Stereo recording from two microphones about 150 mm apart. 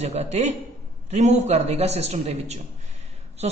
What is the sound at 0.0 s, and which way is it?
Speech, 45° right (ahead or behind).